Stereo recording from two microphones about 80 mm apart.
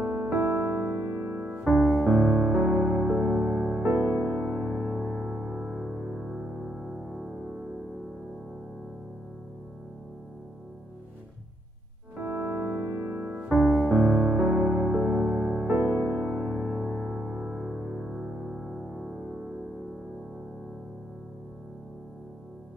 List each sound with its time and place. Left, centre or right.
0.0 s music: right
2.0 s music: centre
2.5 s music: centre
12.2 s music: right
13.5 s music: centre
14.3 s music: centre